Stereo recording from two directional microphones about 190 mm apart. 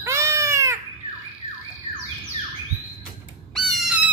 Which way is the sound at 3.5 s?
Centre (ahead or behind).